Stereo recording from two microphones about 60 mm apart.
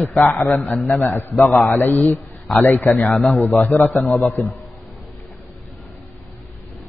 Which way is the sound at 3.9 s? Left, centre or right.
Centre.